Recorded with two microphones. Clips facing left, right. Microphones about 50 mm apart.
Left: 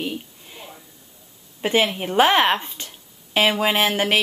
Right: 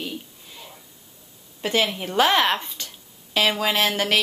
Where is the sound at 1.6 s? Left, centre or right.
Left.